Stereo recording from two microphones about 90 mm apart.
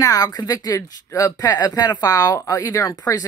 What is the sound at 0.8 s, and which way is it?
Speech, 35° left (ahead or behind).